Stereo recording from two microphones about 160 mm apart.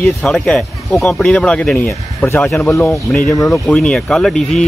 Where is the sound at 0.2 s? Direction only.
5° left (ahead or behind).